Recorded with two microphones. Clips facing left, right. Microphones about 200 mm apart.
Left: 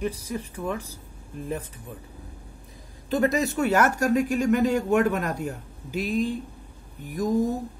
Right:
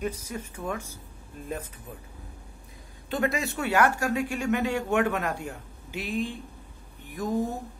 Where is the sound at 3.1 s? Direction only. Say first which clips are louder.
Left 5 dB; 40° left (ahead or behind).